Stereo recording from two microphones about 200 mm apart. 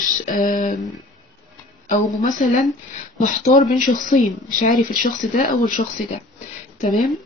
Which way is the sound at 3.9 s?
40° left (ahead or behind).